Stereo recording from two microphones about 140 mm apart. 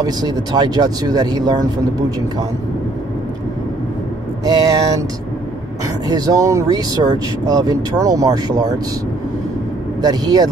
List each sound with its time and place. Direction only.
0.0 s speech: 30° right (ahead or behind)
4.5 s speech: 30° right (ahead or behind)
6.0 s speech: 25° right (ahead or behind)
10.0 s speech: 30° right (ahead or behind)